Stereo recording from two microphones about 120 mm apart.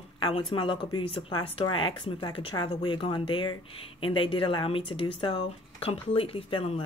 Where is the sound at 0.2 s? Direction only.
50° left (ahead or behind).